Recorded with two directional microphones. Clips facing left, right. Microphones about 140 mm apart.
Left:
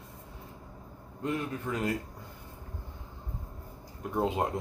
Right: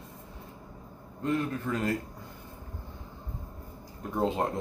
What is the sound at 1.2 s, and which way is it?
Speech, 15° left (ahead or behind).